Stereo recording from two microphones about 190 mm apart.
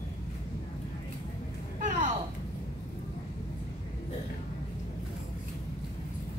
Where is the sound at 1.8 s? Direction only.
40° right (ahead or behind).